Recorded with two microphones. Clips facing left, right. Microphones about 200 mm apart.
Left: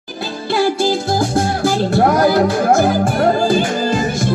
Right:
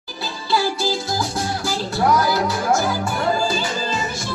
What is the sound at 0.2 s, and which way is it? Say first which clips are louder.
Music: left 5 dB; 55° left (ahead or behind).